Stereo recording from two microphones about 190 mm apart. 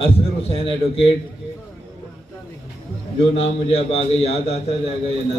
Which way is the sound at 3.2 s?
30° left (ahead or behind).